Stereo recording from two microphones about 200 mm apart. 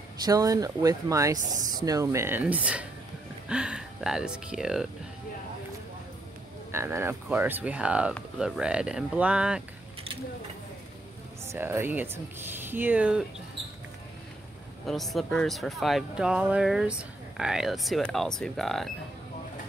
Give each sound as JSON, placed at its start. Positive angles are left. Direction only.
{"t": 0.2, "sound": "speech", "side_deg": -15}
{"t": 1.4, "sound": "speech", "side_deg": -40}
{"t": 1.9, "sound": "speech", "side_deg": -15}
{"t": 6.7, "sound": "speech", "side_deg": -15}
{"t": 11.4, "sound": "speech", "side_deg": -10}
{"t": 14.9, "sound": "speech", "side_deg": 0}